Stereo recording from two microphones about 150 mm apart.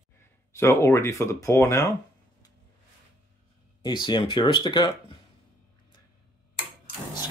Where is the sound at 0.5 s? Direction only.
20° left (ahead or behind).